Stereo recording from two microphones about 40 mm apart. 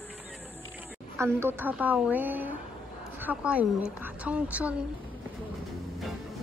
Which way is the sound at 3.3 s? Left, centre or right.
Right.